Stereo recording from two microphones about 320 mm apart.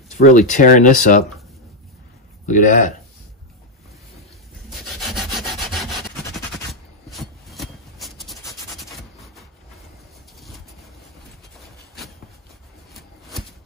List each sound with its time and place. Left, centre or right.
0.1 s speech: left
2.4 s speech: left
4.6 s rub: centre
8.7 s a sound: centre